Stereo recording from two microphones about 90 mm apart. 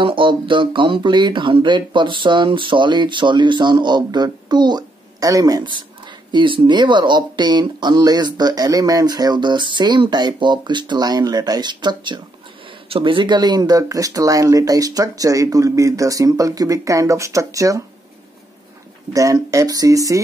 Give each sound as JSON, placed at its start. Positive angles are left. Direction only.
{"t": 0.0, "sound": "speech", "side_deg": -70}
{"t": 6.3, "sound": "speech", "side_deg": -65}
{"t": 12.9, "sound": "speech", "side_deg": -70}
{"t": 19.5, "sound": "speech", "side_deg": -45}